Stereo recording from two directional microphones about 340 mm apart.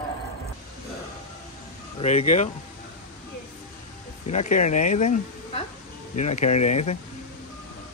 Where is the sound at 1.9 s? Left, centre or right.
Centre.